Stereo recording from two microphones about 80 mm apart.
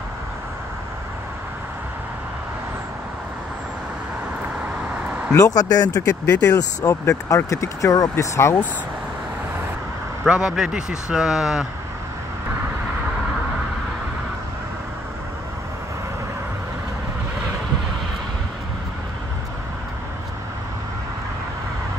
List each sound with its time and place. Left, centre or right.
5.3 s speech: left
10.2 s speech: centre